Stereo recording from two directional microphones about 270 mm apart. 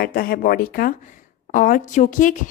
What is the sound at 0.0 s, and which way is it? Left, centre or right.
A woman's voice, left.